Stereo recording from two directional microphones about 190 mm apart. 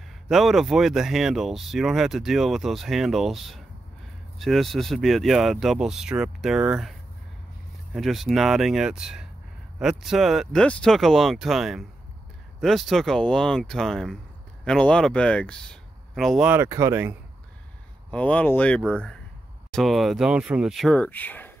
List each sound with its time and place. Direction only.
0.3 s speech: centre (ahead or behind)
18.1 s speech: 5° left (ahead or behind)